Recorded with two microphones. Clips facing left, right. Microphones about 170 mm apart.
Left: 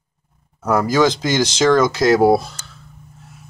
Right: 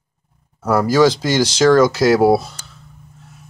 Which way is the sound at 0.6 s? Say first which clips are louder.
Right 2 dB; 5° right (ahead or behind).